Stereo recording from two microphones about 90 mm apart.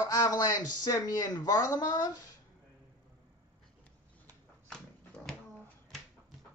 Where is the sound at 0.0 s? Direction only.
45° left (ahead or behind).